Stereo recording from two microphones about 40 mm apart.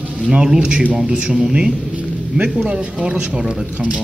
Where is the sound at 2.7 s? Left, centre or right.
Right.